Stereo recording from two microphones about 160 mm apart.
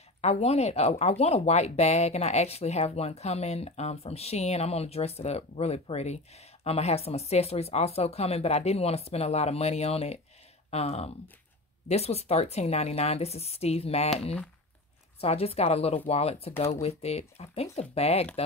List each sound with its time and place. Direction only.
0.2 s speech: 40° left (ahead or behind)
15.1 s speech: 40° left (ahead or behind)